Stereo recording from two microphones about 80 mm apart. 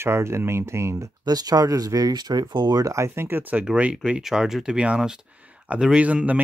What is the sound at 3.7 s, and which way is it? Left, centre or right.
Speech, centre.